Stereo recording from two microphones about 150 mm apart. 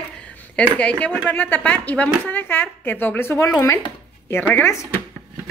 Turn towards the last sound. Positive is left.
turn(degrees=15)  # may be behind; listen again after turning